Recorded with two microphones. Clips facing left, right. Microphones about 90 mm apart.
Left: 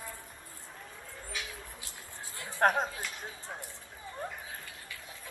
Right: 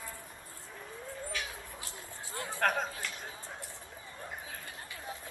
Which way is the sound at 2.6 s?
20° left (ahead or behind).